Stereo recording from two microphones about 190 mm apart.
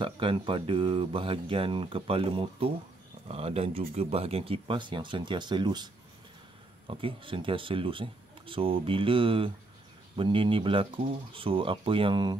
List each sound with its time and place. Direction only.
0.0 s speech: 25° right (ahead or behind)
6.9 s speech: 25° right (ahead or behind)